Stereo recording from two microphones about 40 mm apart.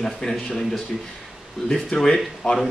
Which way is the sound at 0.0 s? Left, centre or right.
Centre.